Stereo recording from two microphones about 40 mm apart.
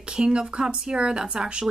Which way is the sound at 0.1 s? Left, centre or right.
Centre.